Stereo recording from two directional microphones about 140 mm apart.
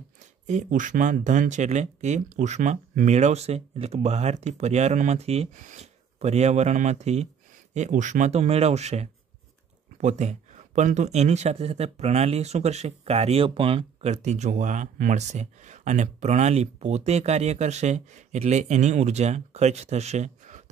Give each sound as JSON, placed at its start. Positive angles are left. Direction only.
{"t": 0.5, "sound": "speech", "side_deg": -60}
{"t": 14.1, "sound": "speech", "side_deg": -55}